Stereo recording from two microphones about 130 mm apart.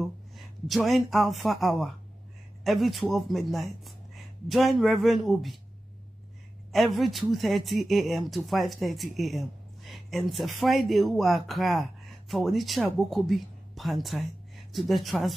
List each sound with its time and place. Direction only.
0.7 s speech: centre (ahead or behind)
6.7 s a woman's voice: centre (ahead or behind)